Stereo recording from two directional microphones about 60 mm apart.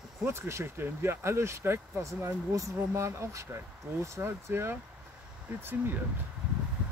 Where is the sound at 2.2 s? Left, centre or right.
Right.